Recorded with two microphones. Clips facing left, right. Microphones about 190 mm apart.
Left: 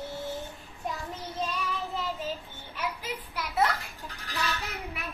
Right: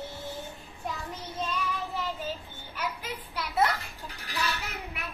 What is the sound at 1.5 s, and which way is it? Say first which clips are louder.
Child singing: right 1 dB; centre (ahead or behind).